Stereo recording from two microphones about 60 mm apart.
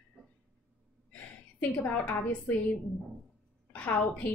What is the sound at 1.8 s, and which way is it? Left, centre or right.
Speech, left.